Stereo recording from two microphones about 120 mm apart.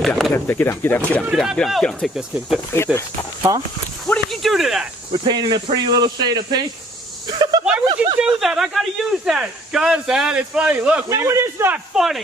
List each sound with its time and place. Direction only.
0.0 s a sound: centre (ahead or behind)
0.3 s speech: 20° left (ahead or behind)
1.3 s speech: centre (ahead or behind)
2.7 s speech: 20° left (ahead or behind)
4.0 s a sound: centre (ahead or behind)
5.2 s speech: 40° right (ahead or behind)
7.6 s speech: 15° right (ahead or behind)
8.2 s speech: 5° right (ahead or behind)
11.1 s a man's voice: 25° right (ahead or behind)
11.9 s speech: 5° right (ahead or behind)